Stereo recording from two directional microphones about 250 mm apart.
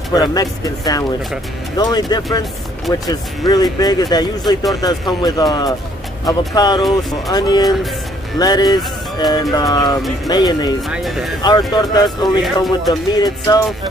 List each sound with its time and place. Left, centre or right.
0.1 s speech: centre
6.8 s speech: centre
7.2 s speech: centre
10.9 s speech: centre
11.4 s speech: centre